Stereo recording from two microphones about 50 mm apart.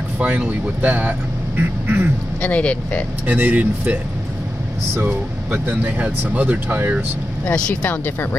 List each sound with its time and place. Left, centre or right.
0.5 s speech: right
2.4 s speech: left
3.3 s speech: right
5.0 s speech: right
7.4 s speech: left
7.9 s speech: left